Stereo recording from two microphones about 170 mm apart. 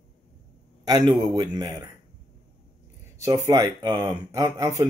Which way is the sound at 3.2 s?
20° right (ahead or behind).